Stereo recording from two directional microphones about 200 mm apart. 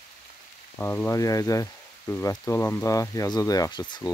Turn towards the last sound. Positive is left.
turn(degrees=20)  # may be behind; listen again after turning